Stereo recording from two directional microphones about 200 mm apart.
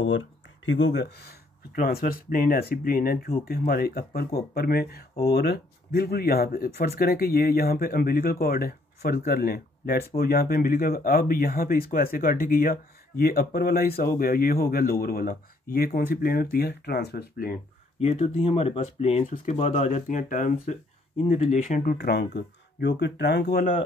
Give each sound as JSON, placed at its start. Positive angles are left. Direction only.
{"t": 0.0, "sound": "speech", "side_deg": 70}
{"t": 17.9, "sound": "speech", "side_deg": 30}
{"t": 21.2, "sound": "speech", "side_deg": 30}
{"t": 21.5, "sound": "speech", "side_deg": 45}